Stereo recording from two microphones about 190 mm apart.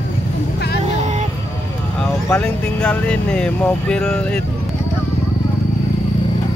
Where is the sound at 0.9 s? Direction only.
35° right (ahead or behind).